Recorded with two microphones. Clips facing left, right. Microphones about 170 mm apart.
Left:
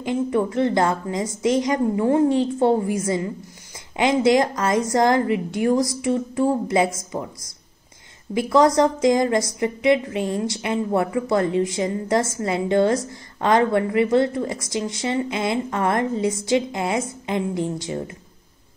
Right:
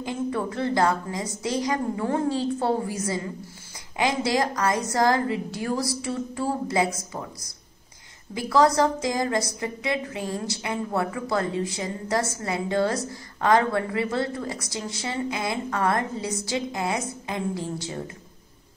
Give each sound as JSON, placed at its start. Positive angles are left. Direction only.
{"t": 0.0, "sound": "a woman's voice", "side_deg": 20}
{"t": 8.4, "sound": "a woman's voice", "side_deg": 20}